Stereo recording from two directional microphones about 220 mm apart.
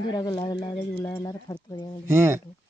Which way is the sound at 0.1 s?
20° left (ahead or behind).